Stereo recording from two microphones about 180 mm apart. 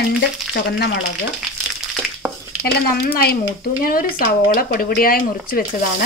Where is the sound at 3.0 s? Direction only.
60° left (ahead or behind).